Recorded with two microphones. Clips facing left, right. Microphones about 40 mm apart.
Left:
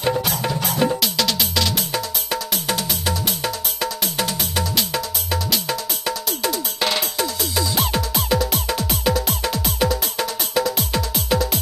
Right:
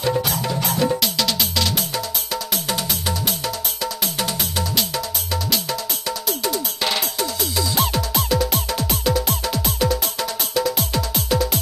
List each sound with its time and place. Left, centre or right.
1.0 s music: centre
4.0 s music: centre
6.8 s music: centre
9.8 s music: centre